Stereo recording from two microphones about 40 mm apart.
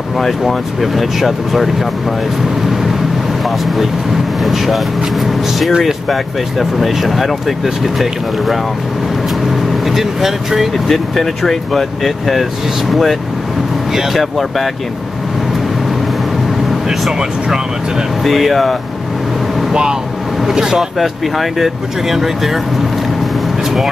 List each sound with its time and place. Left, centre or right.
0.2 s speech: centre
3.4 s speech: centre
5.7 s speech: centre
10.9 s speech: centre
17.2 s speech: centre
18.2 s speech: centre
19.7 s speech: centre
21.0 s speech: centre